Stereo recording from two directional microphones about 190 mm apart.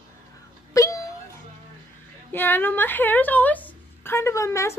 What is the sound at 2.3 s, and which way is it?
A woman's voice, 10° left (ahead or behind).